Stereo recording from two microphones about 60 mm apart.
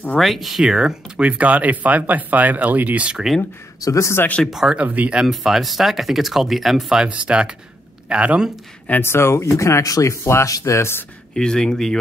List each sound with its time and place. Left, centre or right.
0.2 s speech: centre
3.8 s speech: left
4.5 s speech: centre
4.7 s speech: right
5.2 s speech: centre
7.1 s speech: centre
9.0 s speech: left
11.3 s speech: centre